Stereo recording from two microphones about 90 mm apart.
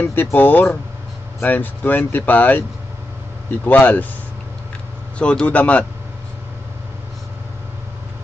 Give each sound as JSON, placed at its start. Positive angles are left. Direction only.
{"t": 0.0, "sound": "speech", "side_deg": 20}
{"t": 3.6, "sound": "speech", "side_deg": 20}
{"t": 5.2, "sound": "speech", "side_deg": 10}